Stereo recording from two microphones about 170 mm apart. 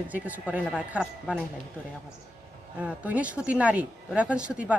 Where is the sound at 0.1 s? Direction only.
10° right (ahead or behind).